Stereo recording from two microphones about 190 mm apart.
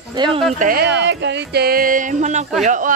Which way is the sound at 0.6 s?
50° right (ahead or behind).